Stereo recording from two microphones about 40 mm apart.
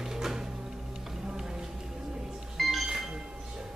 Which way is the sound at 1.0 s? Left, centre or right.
Centre.